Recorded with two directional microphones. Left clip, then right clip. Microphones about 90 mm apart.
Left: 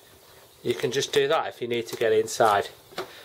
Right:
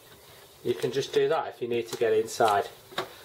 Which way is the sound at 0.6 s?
35° left (ahead or behind).